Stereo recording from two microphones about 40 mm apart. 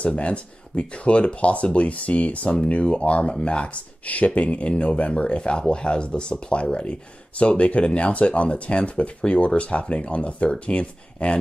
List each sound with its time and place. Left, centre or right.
0.0 s speech: left
5.1 s speech: left